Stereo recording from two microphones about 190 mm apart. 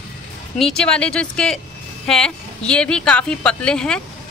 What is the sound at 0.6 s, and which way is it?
A woman's voice, centre (ahead or behind).